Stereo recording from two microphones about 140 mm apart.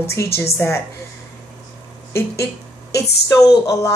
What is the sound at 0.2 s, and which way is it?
Speech, 20° left (ahead or behind).